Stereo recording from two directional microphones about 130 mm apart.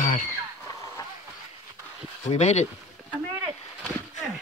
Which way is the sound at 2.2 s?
60° left (ahead or behind).